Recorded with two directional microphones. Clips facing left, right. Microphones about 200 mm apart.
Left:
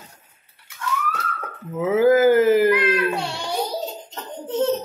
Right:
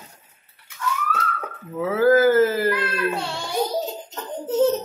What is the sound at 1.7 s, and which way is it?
Speech, 20° left (ahead or behind).